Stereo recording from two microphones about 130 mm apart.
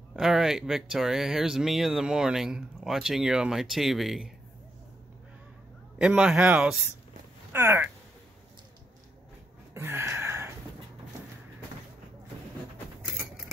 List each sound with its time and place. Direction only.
0.1 s speech: 5° right (ahead or behind)
5.9 s speech: 5° right (ahead or behind)
7.5 s speech: 20° right (ahead or behind)
9.8 s gasp: 20° right (ahead or behind)